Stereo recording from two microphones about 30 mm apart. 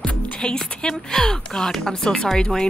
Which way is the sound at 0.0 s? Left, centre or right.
Left.